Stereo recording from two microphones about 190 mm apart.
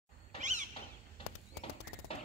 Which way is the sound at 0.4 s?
40° right (ahead or behind).